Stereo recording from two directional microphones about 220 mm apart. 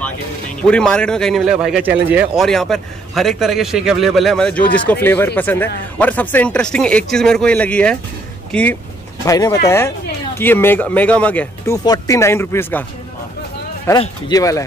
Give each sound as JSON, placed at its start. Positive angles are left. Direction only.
{"t": 0.6, "sound": "a man's voice", "side_deg": 5}
{"t": 13.8, "sound": "speech", "side_deg": 15}